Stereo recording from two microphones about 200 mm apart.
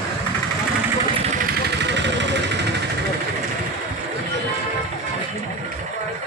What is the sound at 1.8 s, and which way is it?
Vehicle, 60° right (ahead or behind).